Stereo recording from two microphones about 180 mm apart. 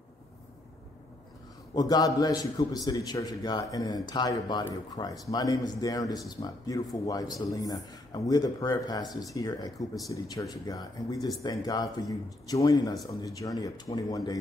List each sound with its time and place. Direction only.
1.8 s a man's voice: 20° left (ahead or behind)